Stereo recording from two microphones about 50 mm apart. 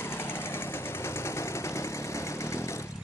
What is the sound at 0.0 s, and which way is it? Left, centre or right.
Vehicle, left.